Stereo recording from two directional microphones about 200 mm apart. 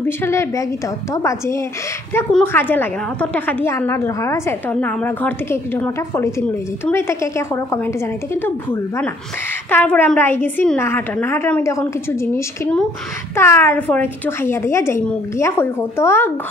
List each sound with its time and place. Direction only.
0.0 s a woman's voice: 10° left (ahead or behind)